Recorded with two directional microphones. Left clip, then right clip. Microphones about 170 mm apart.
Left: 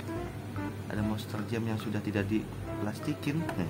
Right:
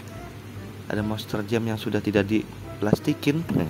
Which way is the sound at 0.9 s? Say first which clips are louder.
Right 9 dB; 40° right (ahead or behind).